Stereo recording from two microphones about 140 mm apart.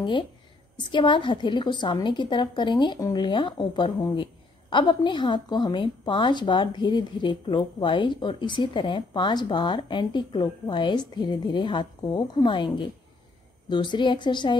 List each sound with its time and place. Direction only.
0.7 s a woman's voice: 35° left (ahead or behind)